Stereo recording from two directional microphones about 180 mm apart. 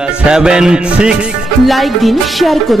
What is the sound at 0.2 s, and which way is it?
Music, 5° right (ahead or behind).